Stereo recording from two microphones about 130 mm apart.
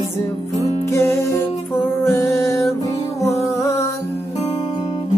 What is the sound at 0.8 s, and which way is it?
Music, 25° left (ahead or behind).